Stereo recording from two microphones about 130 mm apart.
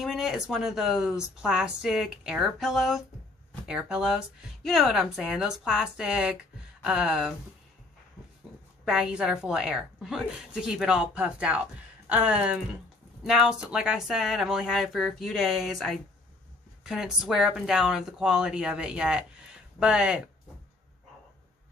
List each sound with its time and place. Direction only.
0.0 s speech: centre (ahead or behind)
8.8 s speech: 5° right (ahead or behind)